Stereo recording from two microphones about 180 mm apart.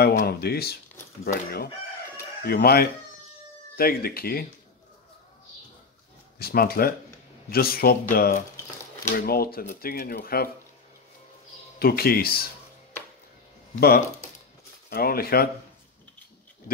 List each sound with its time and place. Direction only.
0.0 s speech: 60° left (ahead or behind)
6.3 s speech: 55° left (ahead or behind)
11.8 s speech: 60° left (ahead or behind)
13.7 s speech: 55° left (ahead or behind)